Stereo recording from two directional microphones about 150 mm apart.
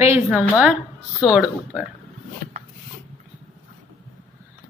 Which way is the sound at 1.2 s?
5° right (ahead or behind).